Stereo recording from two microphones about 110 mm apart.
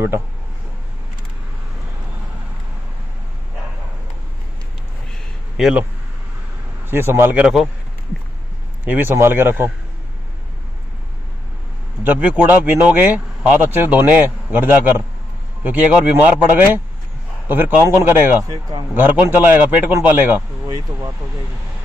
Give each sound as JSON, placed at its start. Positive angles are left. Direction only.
{"t": 5.6, "sound": "speech", "side_deg": -5}
{"t": 6.9, "sound": "speech", "side_deg": -20}
{"t": 8.8, "sound": "speech", "side_deg": -20}
{"t": 12.0, "sound": "speech", "side_deg": -15}
{"t": 18.5, "sound": "speech", "side_deg": -35}
{"t": 18.9, "sound": "speech", "side_deg": -15}
{"t": 20.6, "sound": "speech", "side_deg": -35}